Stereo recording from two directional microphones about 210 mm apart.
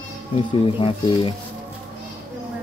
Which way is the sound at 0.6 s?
25° left (ahead or behind).